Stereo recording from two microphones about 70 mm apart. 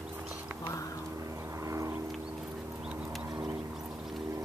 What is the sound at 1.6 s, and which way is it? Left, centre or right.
Vehicle, right.